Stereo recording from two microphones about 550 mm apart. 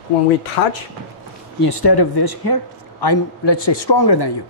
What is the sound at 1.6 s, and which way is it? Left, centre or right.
A man's voice, left.